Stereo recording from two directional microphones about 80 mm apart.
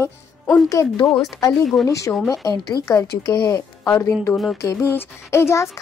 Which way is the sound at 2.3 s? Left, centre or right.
Left.